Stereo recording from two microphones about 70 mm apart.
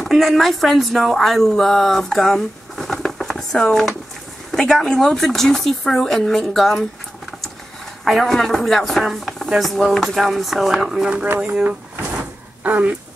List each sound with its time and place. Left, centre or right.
0.0 s speech: centre
8.0 s speech: centre
11.2 s speech: right
12.6 s speech: right